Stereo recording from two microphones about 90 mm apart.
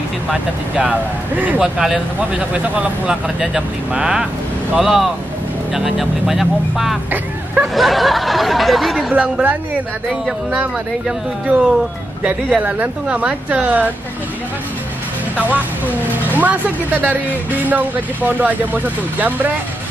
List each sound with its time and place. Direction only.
0.7 s speech: 15° right (ahead or behind)
1.6 s speech: 5° right (ahead or behind)
9.1 s speech: 15° right (ahead or behind)
11.4 s speech: 15° right (ahead or behind)
16.3 s speech: 20° right (ahead or behind)